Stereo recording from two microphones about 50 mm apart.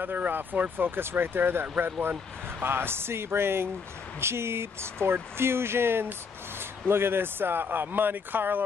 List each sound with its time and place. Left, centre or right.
0.0 s speech: right